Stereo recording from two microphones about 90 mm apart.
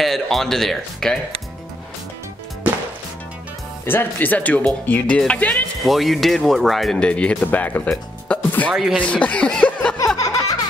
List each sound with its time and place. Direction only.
0.0 s speech: centre (ahead or behind)
3.8 s speech: 25° left (ahead or behind)
5.9 s speech: centre (ahead or behind); by 7.9 s 20° left (ahead or behind)
7.9 s music: 5° left (ahead or behind)
8.7 s speech: 5° right (ahead or behind)
9.0 s speech: 15° left (ahead or behind)
10.1 s a sound: 40° left (ahead or behind)